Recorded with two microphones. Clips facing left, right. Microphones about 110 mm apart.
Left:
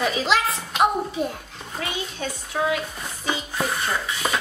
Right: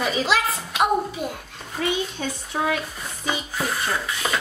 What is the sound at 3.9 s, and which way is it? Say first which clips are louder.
Speech: even; centre (ahead or behind).